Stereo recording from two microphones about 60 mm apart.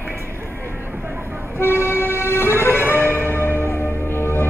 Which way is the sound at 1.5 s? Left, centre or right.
Left.